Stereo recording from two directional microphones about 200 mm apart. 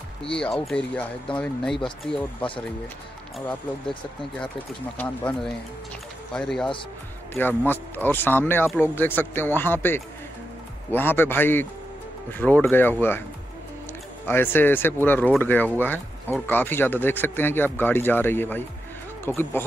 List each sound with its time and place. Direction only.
0.4 s speech: centre (ahead or behind)
3.8 s speech: 25° left (ahead or behind)
4.4 s speech: 10° left (ahead or behind)
14.2 s speech: 10° left (ahead or behind)